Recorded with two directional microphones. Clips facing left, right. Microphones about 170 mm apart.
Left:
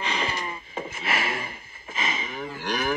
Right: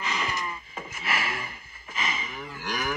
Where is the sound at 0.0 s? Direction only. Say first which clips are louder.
Left 2 dB; 30° left (ahead or behind).